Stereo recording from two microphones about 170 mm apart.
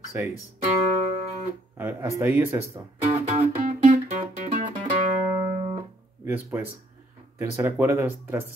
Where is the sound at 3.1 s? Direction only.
40° right (ahead or behind).